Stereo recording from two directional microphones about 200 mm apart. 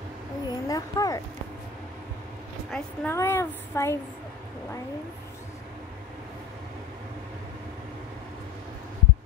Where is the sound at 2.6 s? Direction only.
5° left (ahead or behind).